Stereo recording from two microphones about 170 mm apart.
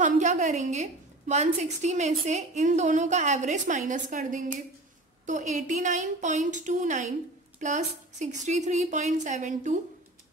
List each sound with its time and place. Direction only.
0.0 s a woman's voice: 45° right (ahead or behind)